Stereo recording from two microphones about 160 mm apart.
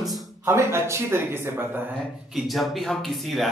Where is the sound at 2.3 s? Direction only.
Centre (ahead or behind).